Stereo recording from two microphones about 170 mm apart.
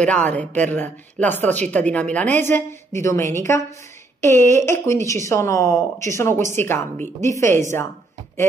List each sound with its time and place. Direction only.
0.0 s speech: 10° left (ahead or behind)